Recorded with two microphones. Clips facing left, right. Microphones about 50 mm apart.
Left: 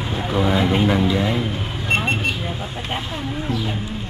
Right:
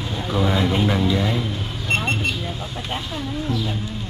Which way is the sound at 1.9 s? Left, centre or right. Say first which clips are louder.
Left 2 dB; centre.